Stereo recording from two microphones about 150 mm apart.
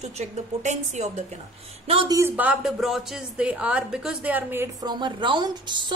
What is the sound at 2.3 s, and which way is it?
A woman's voice, 10° right (ahead or behind).